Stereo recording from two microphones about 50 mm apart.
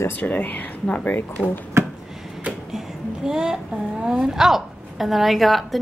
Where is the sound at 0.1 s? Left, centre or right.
Left.